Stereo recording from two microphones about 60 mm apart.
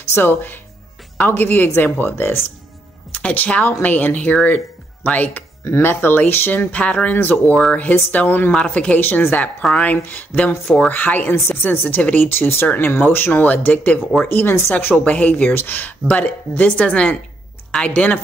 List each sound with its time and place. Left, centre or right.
0.1 s speech: left
3.1 s speech: left
3.6 s speech: left
5.8 s speech: left
6.7 s speech: left
7.1 s speech: left
8.5 s speech: centre
8.7 s speech: left
9.6 s speech: centre
9.8 s speech: left
14.2 s speech: left
14.7 s speech: left